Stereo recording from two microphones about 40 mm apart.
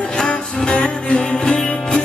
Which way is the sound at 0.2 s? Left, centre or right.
Left.